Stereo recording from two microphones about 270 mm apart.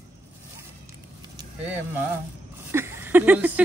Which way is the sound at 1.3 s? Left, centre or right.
Centre.